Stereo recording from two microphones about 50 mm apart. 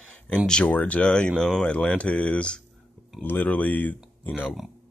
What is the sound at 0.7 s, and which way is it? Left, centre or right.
Speech, left.